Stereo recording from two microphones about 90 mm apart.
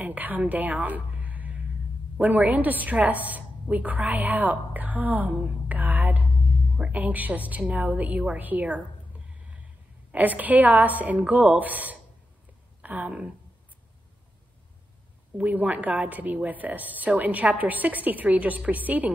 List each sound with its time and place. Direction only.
0.0 s a woman's voice: 20° right (ahead or behind)
10.1 s a woman's voice: 20° right (ahead or behind)
15.3 s a woman's voice: 15° right (ahead or behind)